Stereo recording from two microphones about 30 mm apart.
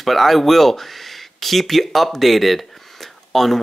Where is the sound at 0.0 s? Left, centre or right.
Centre.